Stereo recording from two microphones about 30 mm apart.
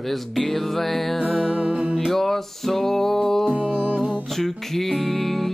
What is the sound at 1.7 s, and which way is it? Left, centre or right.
Music, right.